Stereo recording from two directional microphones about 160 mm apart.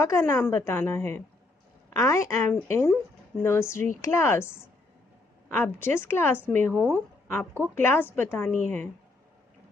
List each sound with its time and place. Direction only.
0.0 s a woman's voice: 15° left (ahead or behind)